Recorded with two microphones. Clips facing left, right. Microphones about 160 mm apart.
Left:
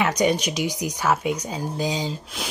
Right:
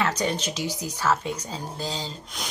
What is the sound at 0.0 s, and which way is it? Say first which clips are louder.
Speech: left 5 dB; 15° left (ahead or behind).